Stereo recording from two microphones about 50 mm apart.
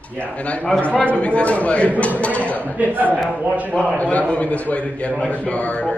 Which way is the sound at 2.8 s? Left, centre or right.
Right.